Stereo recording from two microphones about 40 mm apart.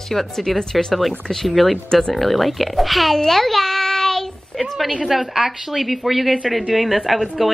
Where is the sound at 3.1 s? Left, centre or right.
Centre.